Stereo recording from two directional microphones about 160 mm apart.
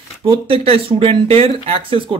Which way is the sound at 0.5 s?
35° right (ahead or behind).